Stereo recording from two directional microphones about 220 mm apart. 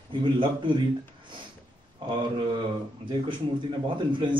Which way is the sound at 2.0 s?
20° right (ahead or behind).